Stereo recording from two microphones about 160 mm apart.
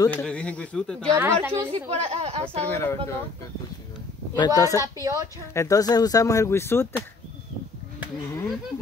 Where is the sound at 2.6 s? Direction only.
15° left (ahead or behind).